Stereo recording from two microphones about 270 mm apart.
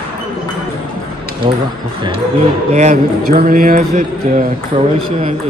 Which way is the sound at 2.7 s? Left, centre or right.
Right.